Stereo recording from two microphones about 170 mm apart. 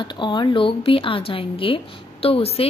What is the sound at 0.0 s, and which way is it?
A woman's voice, 25° left (ahead or behind).